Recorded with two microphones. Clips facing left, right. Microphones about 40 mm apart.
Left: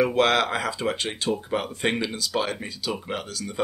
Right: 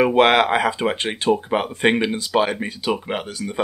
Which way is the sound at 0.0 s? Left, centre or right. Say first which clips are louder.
Right 6 dB; right.